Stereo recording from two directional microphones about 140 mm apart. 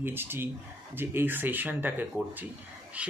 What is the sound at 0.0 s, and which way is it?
Speech, 15° right (ahead or behind).